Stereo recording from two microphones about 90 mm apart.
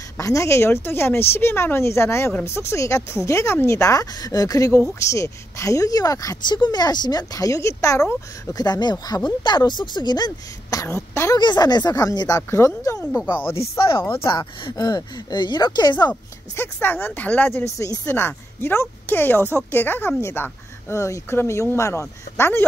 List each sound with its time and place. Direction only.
0.2 s speech: 35° left (ahead or behind)
6.4 s speech: 55° left (ahead or behind); by 8.6 s 35° left (ahead or behind)
8.6 s speech: 50° left (ahead or behind); by 11.3 s 30° left (ahead or behind)
11.3 s speech: 50° left (ahead or behind)
12.4 s speech: 30° left (ahead or behind)
13.6 s speech: 80° left
14.0 s speech: 25° left (ahead or behind)
14.7 s speech: 50° left (ahead or behind)
16.5 s speech: 25° left (ahead or behind)
17.5 s speech: 30° left (ahead or behind)
18.1 s speech: 25° left (ahead or behind)